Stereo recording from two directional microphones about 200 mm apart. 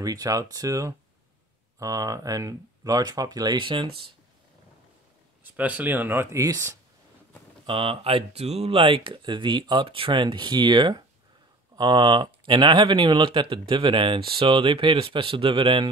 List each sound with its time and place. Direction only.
0.0 s speech: 20° right (ahead or behind)
5.4 s speech: 5° right (ahead or behind)
7.6 s speech: 25° right (ahead or behind)